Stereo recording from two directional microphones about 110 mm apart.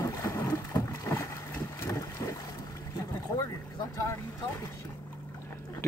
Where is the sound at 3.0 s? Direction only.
35° left (ahead or behind).